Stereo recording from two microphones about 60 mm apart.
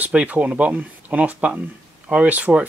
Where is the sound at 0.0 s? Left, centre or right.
Right.